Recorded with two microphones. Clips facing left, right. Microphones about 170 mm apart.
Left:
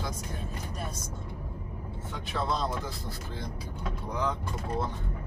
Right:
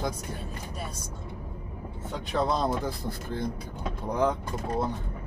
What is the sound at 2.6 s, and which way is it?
Speech, 55° right (ahead or behind).